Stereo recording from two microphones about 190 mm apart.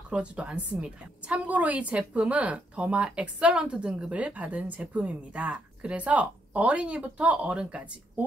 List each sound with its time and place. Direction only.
0.1 s a woman's voice: 5° right (ahead or behind)